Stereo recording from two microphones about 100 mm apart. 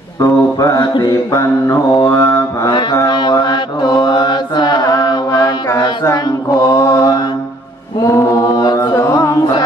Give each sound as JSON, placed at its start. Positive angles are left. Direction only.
{"t": 0.2, "sound": "mantra", "side_deg": 35}
{"t": 1.3, "sound": "mantra", "side_deg": 30}
{"t": 3.1, "sound": "mantra", "side_deg": 45}
{"t": 8.0, "sound": "chant", "side_deg": 35}
{"t": 9.1, "sound": "carnatic music", "side_deg": 35}